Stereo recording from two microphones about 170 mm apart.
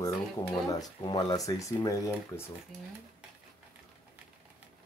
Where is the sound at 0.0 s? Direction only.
20° left (ahead or behind).